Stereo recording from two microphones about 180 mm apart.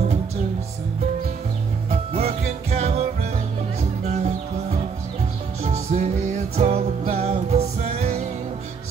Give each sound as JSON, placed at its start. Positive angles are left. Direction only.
{"t": 1.9, "sound": "music", "side_deg": -35}
{"t": 5.6, "sound": "music", "side_deg": -40}